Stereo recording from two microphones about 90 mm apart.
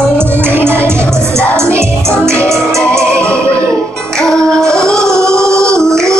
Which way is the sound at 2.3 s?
10° left (ahead or behind).